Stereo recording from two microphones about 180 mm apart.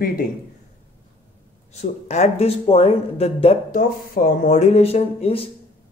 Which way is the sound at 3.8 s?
55° left (ahead or behind).